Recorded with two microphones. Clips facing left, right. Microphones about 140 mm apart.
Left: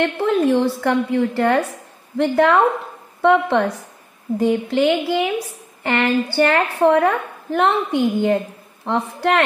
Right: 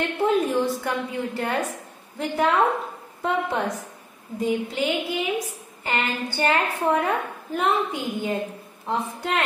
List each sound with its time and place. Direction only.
0.0 s a woman's voice: 80° left